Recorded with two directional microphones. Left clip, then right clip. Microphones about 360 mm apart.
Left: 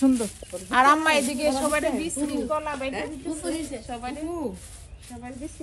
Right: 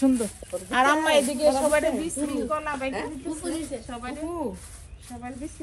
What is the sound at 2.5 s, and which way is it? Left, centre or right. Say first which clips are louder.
Speech: left 1 dB; centre.